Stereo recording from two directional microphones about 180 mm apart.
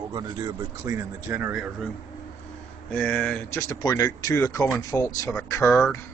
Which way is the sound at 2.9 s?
5° left (ahead or behind).